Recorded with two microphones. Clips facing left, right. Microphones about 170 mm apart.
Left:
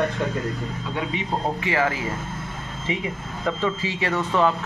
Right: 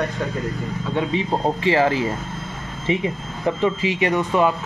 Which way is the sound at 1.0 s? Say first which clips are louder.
Right 5 dB; 30° right (ahead or behind).